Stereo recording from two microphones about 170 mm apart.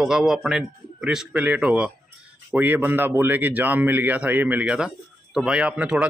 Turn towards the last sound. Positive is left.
turn(degrees=-5)  # may be behind; listen again after turning